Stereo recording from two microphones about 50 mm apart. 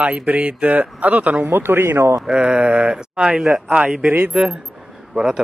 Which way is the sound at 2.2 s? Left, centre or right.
Centre.